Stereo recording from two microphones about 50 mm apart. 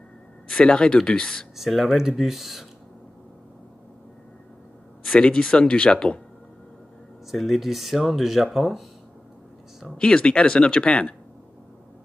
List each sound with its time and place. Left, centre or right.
0.5 s speech: centre
1.6 s speech: centre
5.1 s speech: centre
7.2 s speech: centre
9.9 s speech: centre